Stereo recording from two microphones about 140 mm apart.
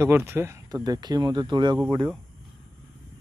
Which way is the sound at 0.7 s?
30° right (ahead or behind).